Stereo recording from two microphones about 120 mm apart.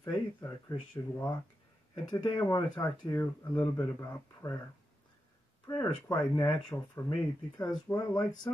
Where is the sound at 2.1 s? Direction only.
35° left (ahead or behind).